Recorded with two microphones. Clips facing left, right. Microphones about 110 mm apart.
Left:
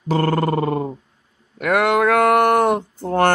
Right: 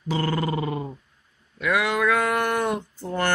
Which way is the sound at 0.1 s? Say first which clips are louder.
Left 7 dB; 50° left (ahead or behind).